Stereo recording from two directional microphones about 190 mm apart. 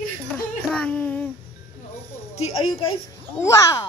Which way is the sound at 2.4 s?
30° left (ahead or behind).